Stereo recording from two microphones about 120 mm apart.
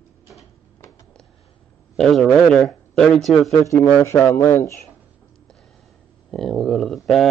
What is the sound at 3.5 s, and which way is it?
Speech, 25° left (ahead or behind).